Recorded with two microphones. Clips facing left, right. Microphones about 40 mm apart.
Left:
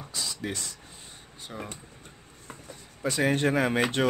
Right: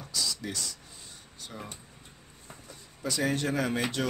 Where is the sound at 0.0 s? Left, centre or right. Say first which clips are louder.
Even; left.